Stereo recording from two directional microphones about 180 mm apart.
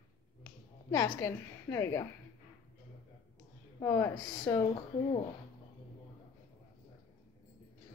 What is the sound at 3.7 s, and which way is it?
Speech, 15° left (ahead or behind).